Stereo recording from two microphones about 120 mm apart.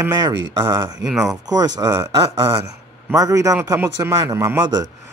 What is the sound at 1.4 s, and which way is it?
Speech, 35° right (ahead or behind).